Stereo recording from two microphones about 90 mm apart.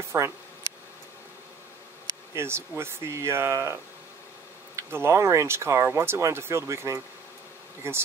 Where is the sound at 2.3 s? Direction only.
30° right (ahead or behind).